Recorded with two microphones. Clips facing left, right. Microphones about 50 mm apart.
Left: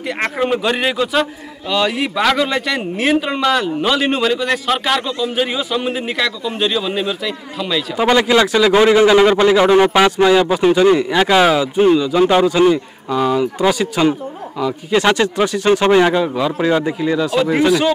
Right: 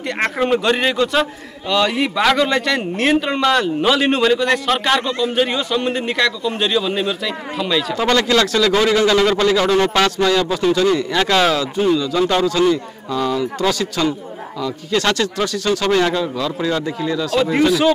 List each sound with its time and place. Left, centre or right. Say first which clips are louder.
0.0 s a man's voice: even; centre
7.9 s speech: left 4 dB; centre
17.4 s a man's voice: even; centre